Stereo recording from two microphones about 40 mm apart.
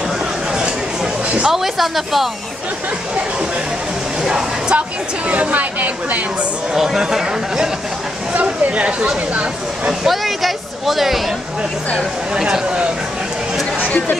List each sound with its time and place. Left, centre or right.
1.5 s speech: centre
4.3 s speech: right
5.3 s speech: right
6.7 s speech: centre
8.3 s speech: right
10.0 s a sound: centre